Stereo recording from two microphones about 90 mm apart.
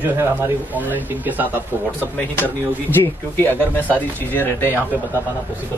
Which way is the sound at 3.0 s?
25° left (ahead or behind).